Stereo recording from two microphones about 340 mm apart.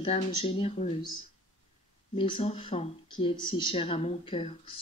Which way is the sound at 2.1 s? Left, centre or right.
Centre.